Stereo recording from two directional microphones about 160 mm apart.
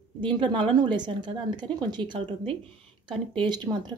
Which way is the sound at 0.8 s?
30° right (ahead or behind).